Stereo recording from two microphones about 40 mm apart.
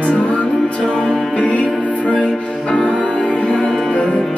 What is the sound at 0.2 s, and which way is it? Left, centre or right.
Music, left.